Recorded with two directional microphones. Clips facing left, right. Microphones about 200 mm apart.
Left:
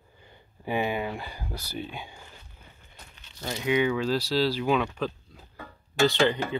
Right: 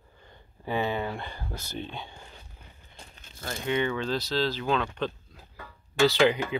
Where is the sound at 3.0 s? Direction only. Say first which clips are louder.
Right 3 dB; 30° right (ahead or behind).